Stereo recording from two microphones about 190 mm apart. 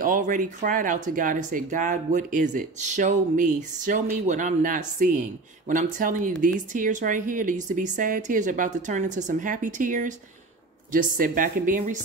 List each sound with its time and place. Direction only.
0.0 s speech: 45° right (ahead or behind)